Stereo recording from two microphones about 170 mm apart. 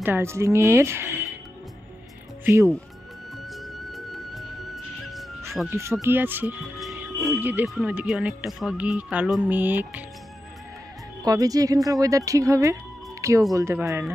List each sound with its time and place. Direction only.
0.0 s speech: 15° right (ahead or behind)
2.4 s speech: 15° right (ahead or behind)
3.4 s music: centre (ahead or behind)
5.7 s speech: 15° right (ahead or behind)
6.8 s music: centre (ahead or behind)
7.3 s speech: 10° right (ahead or behind)
11.2 s speech: 20° right (ahead or behind)